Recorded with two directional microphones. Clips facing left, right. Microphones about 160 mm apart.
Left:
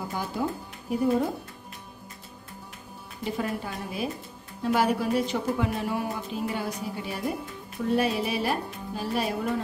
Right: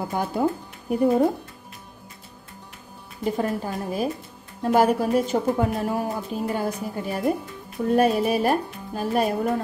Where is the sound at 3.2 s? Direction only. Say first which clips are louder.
Right 5 dB; 45° right (ahead or behind).